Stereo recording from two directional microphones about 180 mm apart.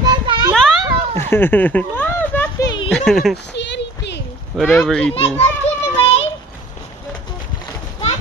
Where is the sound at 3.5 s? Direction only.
75° left (ahead or behind).